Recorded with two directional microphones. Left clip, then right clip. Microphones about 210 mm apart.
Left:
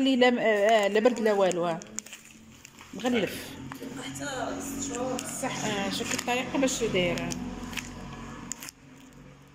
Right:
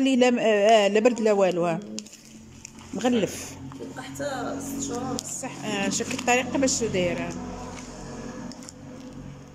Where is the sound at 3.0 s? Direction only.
5° right (ahead or behind).